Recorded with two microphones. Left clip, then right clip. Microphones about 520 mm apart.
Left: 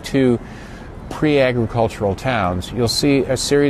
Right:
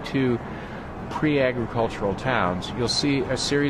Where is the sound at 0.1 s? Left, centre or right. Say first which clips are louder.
Left 8 dB; left.